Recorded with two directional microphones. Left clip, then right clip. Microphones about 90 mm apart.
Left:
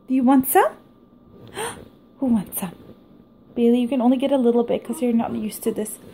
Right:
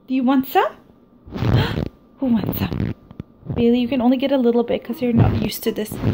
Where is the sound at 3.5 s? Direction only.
20° left (ahead or behind).